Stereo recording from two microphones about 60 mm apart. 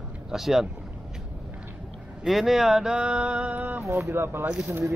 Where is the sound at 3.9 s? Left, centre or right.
Right.